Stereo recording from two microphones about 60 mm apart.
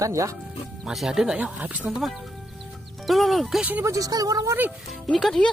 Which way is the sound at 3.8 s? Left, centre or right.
Right.